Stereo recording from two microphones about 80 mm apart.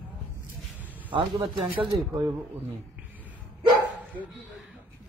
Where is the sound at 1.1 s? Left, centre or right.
Right.